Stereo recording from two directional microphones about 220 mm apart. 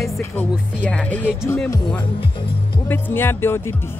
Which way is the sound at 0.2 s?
5° left (ahead or behind).